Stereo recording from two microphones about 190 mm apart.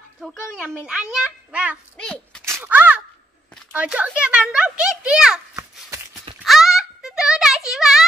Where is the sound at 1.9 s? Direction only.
5° left (ahead or behind).